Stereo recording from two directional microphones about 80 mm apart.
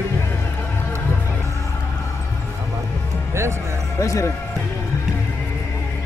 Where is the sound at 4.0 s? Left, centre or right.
Left.